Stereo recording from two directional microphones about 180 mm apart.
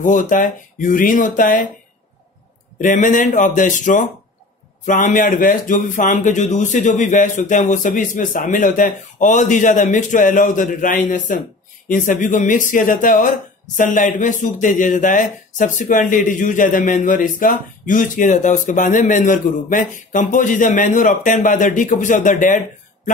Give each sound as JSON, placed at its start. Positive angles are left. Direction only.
{"t": 0.0, "sound": "speech", "side_deg": 45}
{"t": 2.8, "sound": "speech", "side_deg": 45}